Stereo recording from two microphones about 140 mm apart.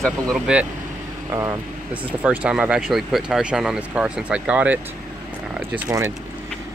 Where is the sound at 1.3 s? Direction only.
25° right (ahead or behind).